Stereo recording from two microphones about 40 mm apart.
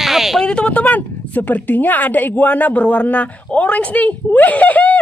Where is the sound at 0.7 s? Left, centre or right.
Left.